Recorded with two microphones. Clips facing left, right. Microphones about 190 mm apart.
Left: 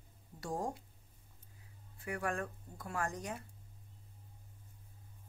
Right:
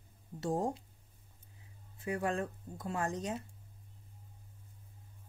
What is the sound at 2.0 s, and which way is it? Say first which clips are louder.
Speech: right 4 dB; 20° right (ahead or behind).